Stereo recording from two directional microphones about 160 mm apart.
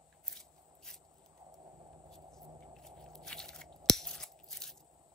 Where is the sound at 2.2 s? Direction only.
20° right (ahead or behind).